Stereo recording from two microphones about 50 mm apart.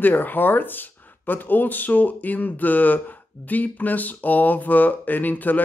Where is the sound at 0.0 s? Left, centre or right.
Left.